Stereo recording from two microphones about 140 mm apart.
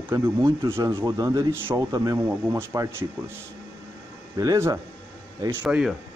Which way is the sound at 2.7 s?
25° right (ahead or behind).